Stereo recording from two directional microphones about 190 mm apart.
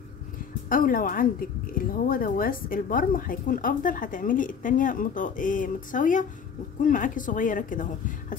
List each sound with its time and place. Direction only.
0.7 s speech: 45° left (ahead or behind)